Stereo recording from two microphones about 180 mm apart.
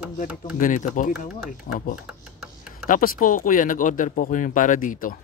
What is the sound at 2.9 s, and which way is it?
A man's voice, 50° left (ahead or behind).